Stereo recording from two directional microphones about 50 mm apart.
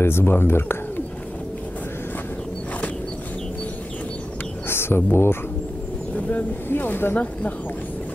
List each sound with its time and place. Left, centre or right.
0.0 s speech: left
4.6 s speech: left
6.7 s speech: left